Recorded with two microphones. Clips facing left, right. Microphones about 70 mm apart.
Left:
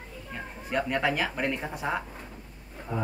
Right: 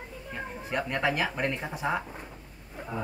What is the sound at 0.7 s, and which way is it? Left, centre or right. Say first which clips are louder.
Speech: left 2 dB; centre.